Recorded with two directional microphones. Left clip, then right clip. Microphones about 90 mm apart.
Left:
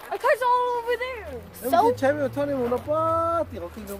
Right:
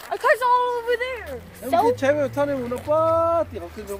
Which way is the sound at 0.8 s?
10° right (ahead or behind).